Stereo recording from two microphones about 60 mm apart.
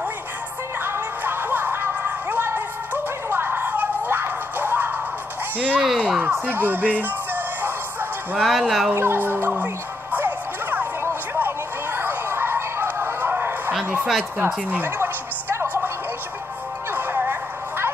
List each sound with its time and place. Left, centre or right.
0.8 s music: right
5.6 s speech: right
5.9 s a sound: right
6.4 s music: right
8.4 s speech: centre
8.9 s speech: right
10.1 s music: right
11.3 s a sound: right
15.0 s music: right
16.9 s music: right